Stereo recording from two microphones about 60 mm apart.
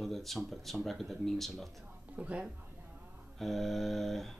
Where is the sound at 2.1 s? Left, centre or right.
Right.